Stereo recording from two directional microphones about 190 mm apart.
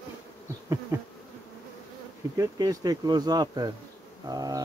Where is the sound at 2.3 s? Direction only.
20° right (ahead or behind).